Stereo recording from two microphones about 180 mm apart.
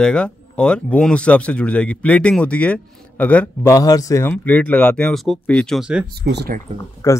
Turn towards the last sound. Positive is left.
turn(degrees=15)  # may be behind; listen again after turning